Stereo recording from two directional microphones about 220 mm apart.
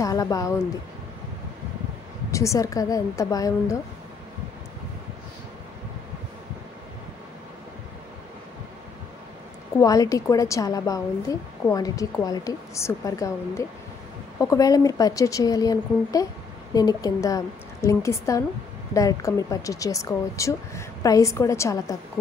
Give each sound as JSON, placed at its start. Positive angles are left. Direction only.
{"t": 0.0, "sound": "speech", "side_deg": 15}
{"t": 2.3, "sound": "a woman's voice", "side_deg": 15}
{"t": 9.8, "sound": "a woman's voice", "side_deg": 15}